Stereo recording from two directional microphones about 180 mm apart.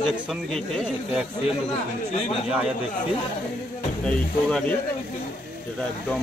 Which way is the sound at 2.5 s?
5° right (ahead or behind).